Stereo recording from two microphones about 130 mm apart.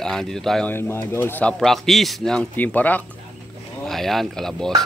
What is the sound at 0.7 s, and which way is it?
Speech, 15° left (ahead or behind).